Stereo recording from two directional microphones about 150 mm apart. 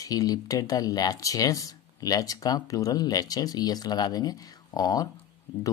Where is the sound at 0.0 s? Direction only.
25° left (ahead or behind).